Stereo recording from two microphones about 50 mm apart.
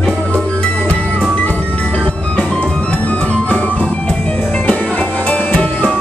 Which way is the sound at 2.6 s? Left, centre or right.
Left.